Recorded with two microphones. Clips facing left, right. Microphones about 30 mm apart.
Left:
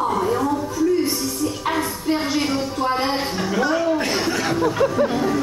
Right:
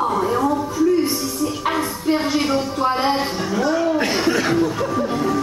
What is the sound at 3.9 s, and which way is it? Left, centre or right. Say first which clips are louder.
Speech: right 3 dB; centre.